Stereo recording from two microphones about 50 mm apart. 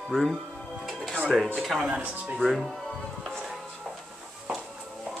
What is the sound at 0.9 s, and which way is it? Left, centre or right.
Music, centre.